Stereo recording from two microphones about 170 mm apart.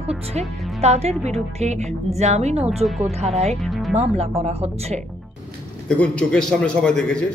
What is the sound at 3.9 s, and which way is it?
Speech, 35° right (ahead or behind).